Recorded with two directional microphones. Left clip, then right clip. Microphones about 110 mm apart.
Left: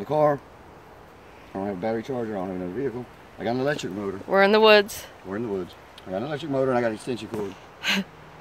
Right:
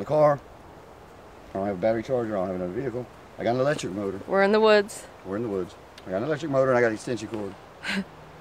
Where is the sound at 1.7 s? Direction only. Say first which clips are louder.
Right 5 dB; 35° right (ahead or behind).